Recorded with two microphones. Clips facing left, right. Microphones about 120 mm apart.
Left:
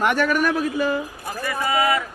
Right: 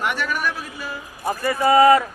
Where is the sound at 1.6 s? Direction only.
40° right (ahead or behind).